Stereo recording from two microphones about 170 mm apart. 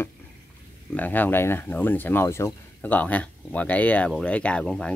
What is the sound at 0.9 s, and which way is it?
Speech, 10° left (ahead or behind).